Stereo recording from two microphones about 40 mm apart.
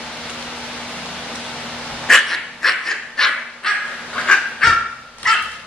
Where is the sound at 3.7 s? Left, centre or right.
Centre.